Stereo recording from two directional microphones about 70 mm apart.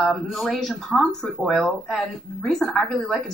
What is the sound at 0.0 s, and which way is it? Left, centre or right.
A woman's voice, centre.